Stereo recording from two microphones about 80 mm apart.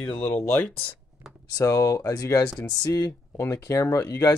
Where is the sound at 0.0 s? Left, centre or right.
Left.